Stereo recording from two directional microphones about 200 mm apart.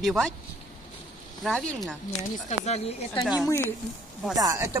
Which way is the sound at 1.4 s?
Centre (ahead or behind).